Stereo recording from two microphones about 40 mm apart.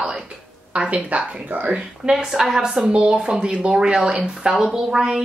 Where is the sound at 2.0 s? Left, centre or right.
Centre.